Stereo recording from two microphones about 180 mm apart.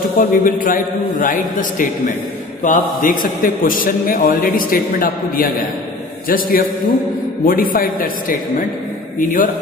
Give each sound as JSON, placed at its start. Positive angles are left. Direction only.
{"t": 0.2, "sound": "a man's voice", "side_deg": 50}